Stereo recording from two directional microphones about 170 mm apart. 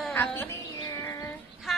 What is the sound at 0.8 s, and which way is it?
Bird, 20° left (ahead or behind).